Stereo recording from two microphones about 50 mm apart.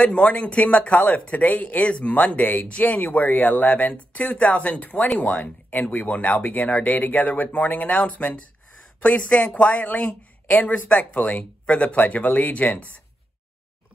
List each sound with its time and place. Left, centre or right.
0.0 s a woman's voice: left